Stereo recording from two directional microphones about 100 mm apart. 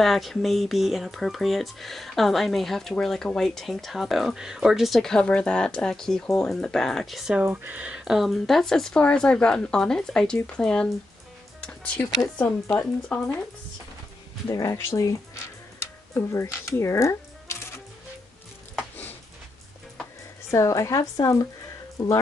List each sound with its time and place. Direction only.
0.0 s speech: centre (ahead or behind)
7.3 s speech: 15° right (ahead or behind); by 10.9 s 10° left (ahead or behind)
12.4 s speech: 10° left (ahead or behind)
14.5 s a woman's voice: 35° left (ahead or behind)
16.2 s speech: 30° left (ahead or behind)
20.5 s a woman's voice: 30° left (ahead or behind)